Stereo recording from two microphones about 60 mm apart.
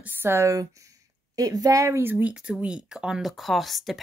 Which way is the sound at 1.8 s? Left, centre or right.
Right.